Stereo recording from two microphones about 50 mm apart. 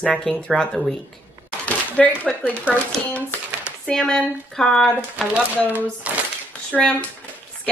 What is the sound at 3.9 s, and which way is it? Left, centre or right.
Speech, centre.